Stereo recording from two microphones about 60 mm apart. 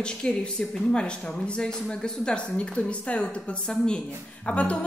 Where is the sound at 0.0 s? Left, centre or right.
Centre.